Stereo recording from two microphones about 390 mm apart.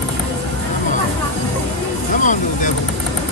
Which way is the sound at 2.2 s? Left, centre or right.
Centre.